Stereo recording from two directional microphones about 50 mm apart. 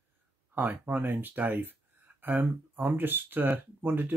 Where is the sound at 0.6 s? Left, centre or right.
Right.